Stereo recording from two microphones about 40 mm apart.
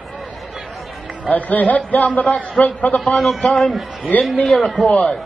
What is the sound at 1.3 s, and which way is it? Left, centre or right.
A man's voice, left.